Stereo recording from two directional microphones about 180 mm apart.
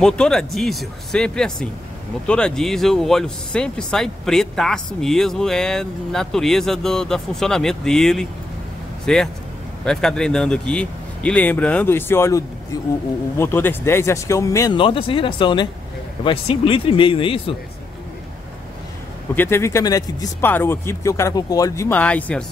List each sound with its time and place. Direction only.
0.0 s speech: 5° left (ahead or behind)
14.8 s speech: 30° left (ahead or behind)
19.3 s speech: 10° left (ahead or behind)